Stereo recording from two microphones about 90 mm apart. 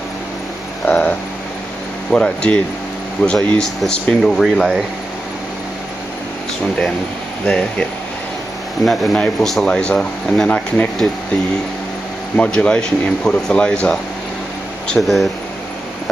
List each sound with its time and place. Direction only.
0.8 s speech: 15° left (ahead or behind); by 4.8 s centre (ahead or behind)
7.4 s speech: 10° left (ahead or behind)
8.8 s speech: centre (ahead or behind)
12.4 s speech: 10° left (ahead or behind)
14.9 s speech: centre (ahead or behind)